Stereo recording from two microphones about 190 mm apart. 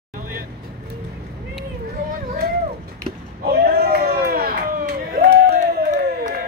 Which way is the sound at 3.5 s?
55° right (ahead or behind).